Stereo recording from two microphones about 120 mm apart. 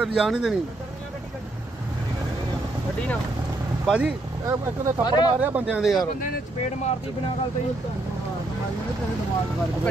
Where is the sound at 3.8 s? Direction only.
10° right (ahead or behind).